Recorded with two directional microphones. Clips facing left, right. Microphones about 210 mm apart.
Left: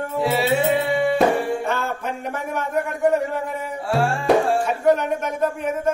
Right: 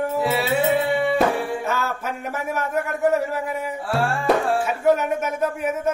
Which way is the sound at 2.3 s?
5° right (ahead or behind).